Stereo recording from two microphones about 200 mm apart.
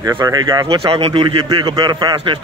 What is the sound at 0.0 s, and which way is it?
Speech, 20° right (ahead or behind).